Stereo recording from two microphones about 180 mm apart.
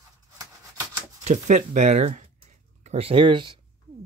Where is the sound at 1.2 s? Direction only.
45° right (ahead or behind).